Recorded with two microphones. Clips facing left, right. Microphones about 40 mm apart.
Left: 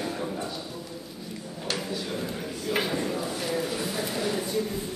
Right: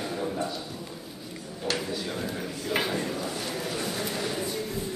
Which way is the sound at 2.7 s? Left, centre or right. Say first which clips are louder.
Left 1 dB; centre.